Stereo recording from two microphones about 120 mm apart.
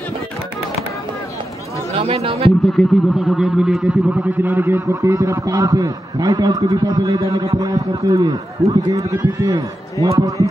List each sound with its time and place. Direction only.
2.0 s speech: 55° right (ahead or behind)
2.6 s speech: centre (ahead or behind)
4.2 s a man's voice: 15° right (ahead or behind)